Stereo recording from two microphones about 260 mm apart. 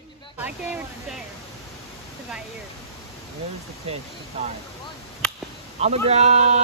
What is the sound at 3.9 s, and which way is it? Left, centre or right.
Speech, right.